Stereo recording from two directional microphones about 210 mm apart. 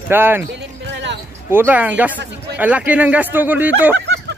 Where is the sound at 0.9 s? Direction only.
55° right (ahead or behind).